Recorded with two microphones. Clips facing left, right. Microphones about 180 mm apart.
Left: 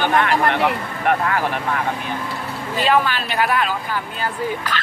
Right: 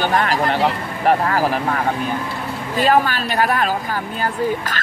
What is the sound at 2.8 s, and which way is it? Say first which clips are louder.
Speech: right 2 dB; 45° right (ahead or behind).